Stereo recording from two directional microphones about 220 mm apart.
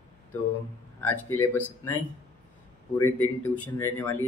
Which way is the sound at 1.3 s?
10° left (ahead or behind).